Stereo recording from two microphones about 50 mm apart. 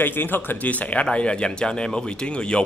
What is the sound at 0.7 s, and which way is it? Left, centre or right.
Speech, left.